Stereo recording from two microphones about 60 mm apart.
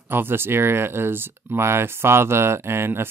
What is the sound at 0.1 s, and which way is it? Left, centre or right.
Speech, right.